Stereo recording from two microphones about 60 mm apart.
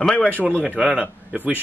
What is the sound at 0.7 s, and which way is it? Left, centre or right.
Speech, centre.